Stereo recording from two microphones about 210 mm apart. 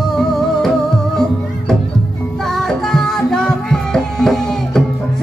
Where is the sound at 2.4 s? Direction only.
Centre (ahead or behind).